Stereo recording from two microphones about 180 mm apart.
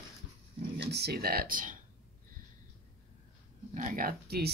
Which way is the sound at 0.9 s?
65° right (ahead or behind).